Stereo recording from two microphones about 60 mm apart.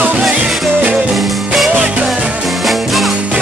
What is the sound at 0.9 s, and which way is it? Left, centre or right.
Music, centre.